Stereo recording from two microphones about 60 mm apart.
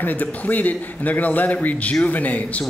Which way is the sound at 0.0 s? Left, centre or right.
Left.